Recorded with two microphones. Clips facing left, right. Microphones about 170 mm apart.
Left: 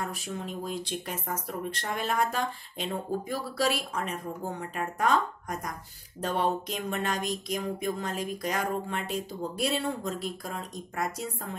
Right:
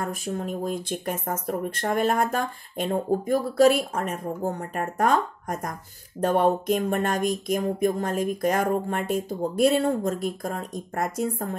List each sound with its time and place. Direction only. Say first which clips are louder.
0.0 s speech: right 6 dB; 50° right (ahead or behind)